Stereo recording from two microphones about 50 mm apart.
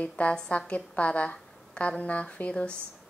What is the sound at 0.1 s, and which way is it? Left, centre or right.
A woman's voice, left.